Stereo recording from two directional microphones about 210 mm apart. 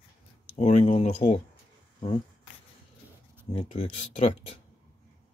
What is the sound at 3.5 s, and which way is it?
Speech, 25° left (ahead or behind).